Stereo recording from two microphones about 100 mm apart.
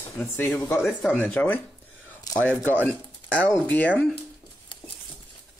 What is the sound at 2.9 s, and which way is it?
Speech, 10° left (ahead or behind).